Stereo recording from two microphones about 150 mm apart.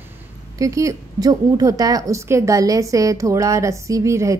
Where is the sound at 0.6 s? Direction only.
20° right (ahead or behind).